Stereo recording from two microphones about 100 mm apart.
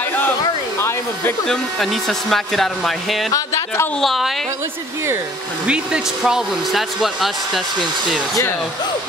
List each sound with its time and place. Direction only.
0.7 s hair dryer: 25° left (ahead or behind)
1.5 s speech: 5° left (ahead or behind)
3.3 s speech: 30° left (ahead or behind)
4.0 s speech: centre (ahead or behind)
5.7 s speech: 10° right (ahead or behind)